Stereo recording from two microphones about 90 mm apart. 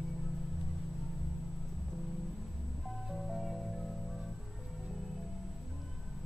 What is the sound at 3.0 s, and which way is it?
Music, centre (ahead or behind).